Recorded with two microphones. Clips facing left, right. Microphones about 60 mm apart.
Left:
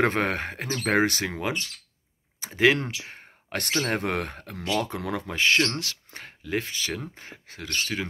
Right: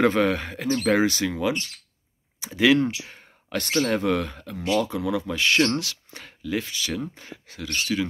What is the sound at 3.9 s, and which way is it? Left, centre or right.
Speech, left.